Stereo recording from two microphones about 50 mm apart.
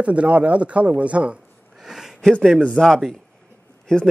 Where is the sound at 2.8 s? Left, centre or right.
Centre.